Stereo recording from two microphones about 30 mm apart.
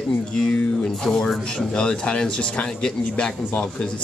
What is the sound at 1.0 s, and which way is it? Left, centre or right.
Speech, centre.